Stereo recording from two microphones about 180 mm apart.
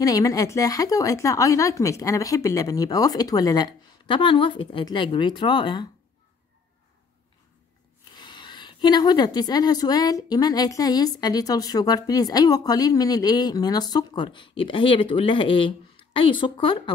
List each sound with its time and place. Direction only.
0.0 s a woman's voice: 20° left (ahead or behind)
8.1 s a woman's voice: 25° left (ahead or behind)